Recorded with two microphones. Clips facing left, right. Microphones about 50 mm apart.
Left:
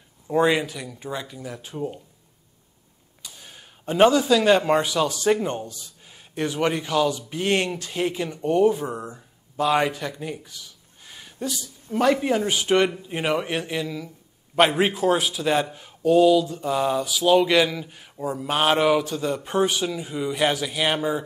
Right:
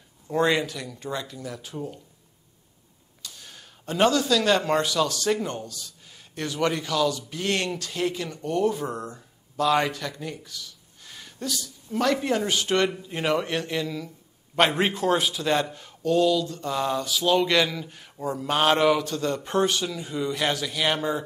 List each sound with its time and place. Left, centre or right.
0.3 s speech: centre
3.2 s a man's voice: centre